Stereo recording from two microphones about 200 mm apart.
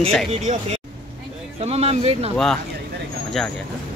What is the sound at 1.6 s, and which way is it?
Speech, 30° right (ahead or behind).